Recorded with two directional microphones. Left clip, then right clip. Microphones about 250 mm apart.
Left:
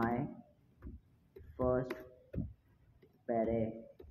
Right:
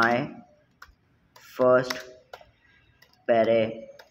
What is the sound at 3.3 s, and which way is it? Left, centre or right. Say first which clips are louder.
Speech: right 14 dB; right.